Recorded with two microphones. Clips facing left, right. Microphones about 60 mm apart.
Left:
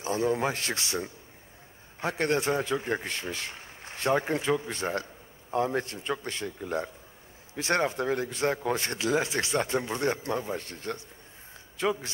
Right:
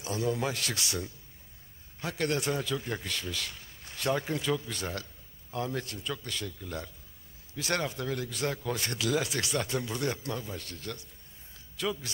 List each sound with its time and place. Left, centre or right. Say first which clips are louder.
0.0 s a man's voice: left 4 dB; left